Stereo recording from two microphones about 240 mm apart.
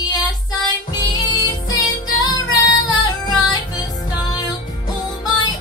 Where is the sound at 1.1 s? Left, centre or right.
Centre.